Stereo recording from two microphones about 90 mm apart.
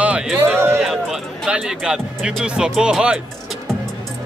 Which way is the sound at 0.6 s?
25° right (ahead or behind).